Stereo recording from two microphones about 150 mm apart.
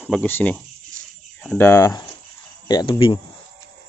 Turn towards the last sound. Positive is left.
turn(degrees=35)  # may be behind; listen again after turning